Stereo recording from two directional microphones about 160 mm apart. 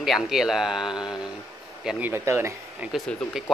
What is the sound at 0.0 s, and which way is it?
Speech, centre (ahead or behind).